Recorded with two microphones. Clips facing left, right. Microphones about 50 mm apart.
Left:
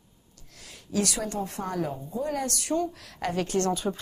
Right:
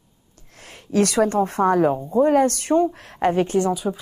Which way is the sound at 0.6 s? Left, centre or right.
Right.